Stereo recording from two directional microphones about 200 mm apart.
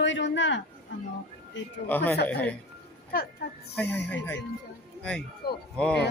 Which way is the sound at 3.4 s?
50° left (ahead or behind).